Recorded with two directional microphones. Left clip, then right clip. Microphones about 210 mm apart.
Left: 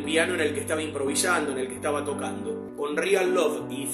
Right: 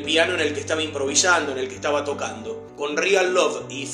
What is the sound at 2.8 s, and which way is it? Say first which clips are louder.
Speech: right 5 dB; 15° left (ahead or behind).